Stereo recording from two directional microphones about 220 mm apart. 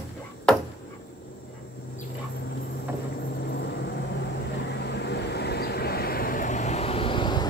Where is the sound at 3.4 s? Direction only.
50° left (ahead or behind); by 7.4 s 20° left (ahead or behind).